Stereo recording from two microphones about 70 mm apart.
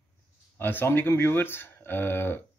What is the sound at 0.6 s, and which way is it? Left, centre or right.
Speech, left.